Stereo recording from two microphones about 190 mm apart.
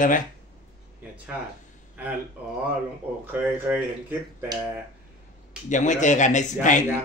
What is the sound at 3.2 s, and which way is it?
Speech, 10° right (ahead or behind).